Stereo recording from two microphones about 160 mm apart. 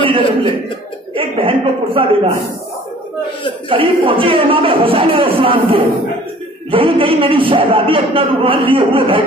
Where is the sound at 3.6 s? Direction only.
35° right (ahead or behind).